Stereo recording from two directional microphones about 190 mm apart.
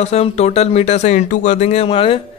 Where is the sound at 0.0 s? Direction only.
35° left (ahead or behind).